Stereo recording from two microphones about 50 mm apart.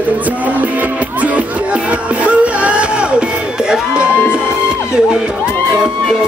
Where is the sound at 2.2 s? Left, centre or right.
Right.